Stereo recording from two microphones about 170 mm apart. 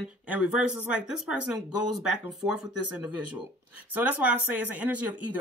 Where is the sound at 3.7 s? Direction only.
10° right (ahead or behind).